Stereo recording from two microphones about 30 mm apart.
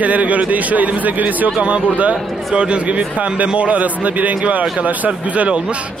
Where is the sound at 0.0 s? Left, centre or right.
Right.